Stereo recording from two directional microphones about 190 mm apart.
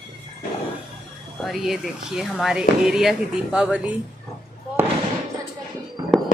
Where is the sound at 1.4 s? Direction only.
Centre (ahead or behind).